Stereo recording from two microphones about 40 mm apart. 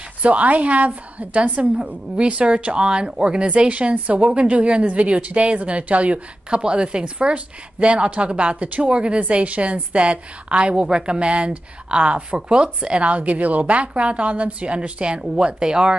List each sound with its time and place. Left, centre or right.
0.2 s a woman's voice: right
3.4 s a woman's voice: right